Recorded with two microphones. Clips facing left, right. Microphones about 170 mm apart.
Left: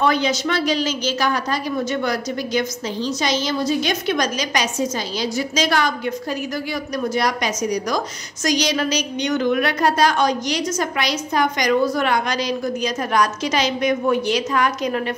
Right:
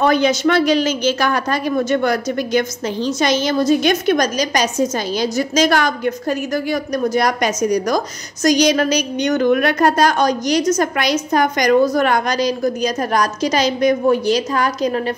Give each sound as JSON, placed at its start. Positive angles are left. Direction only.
{"t": 0.0, "sound": "a woman's voice", "side_deg": -50}